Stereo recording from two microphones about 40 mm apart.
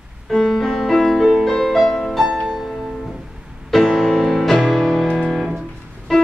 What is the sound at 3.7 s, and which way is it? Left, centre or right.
Music, centre.